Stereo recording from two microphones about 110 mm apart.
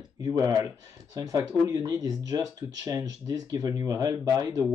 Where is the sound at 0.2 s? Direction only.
35° right (ahead or behind).